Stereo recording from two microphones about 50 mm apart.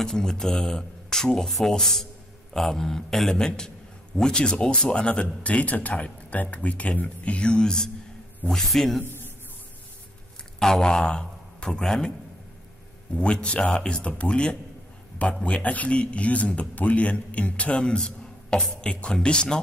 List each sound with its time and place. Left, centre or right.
0.0 s speech: centre
10.6 s a man's voice: centre
13.1 s speech: left